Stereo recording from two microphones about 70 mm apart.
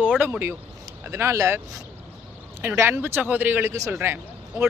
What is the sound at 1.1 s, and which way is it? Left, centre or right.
A man's voice, right.